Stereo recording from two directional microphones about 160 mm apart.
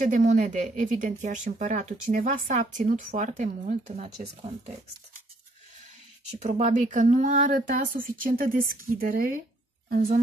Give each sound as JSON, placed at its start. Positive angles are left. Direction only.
{"t": 0.0, "sound": "speech", "side_deg": -50}
{"t": 6.3, "sound": "a woman's voice", "side_deg": -45}